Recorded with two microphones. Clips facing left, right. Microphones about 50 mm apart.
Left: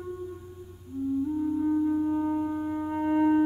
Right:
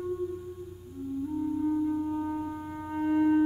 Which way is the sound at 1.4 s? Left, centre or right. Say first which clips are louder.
Even; centre.